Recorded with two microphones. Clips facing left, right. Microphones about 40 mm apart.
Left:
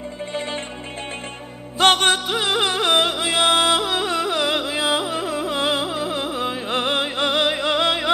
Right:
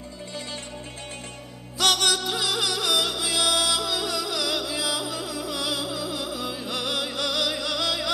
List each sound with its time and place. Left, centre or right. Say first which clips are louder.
0.3 s music: left 8 dB; left
1.8 s music: left 6 dB; left